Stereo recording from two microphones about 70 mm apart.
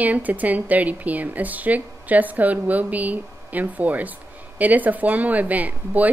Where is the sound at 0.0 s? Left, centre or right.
Right.